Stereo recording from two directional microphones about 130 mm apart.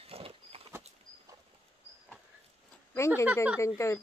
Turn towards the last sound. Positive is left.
turn(degrees=20)  # may be behind; listen again after turning